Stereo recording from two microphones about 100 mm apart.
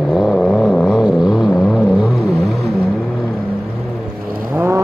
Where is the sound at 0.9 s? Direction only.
5° right (ahead or behind).